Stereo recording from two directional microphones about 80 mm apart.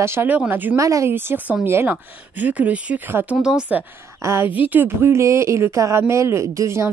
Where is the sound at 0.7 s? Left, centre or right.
Right.